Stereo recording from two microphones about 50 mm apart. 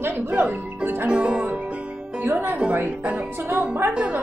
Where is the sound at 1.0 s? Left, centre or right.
Right.